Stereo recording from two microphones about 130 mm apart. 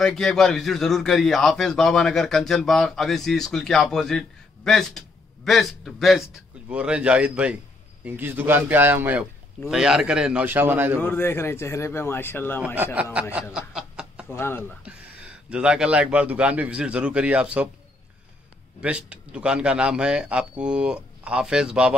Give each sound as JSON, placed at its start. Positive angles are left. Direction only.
{"t": 0.0, "sound": "a man's voice", "side_deg": 0}
{"t": 11.0, "sound": "speech", "side_deg": 15}
{"t": 12.7, "sound": "speech", "side_deg": -10}
{"t": 14.3, "sound": "speech", "side_deg": 15}
{"t": 14.9, "sound": "speech", "side_deg": -10}
{"t": 18.8, "sound": "speech", "side_deg": -10}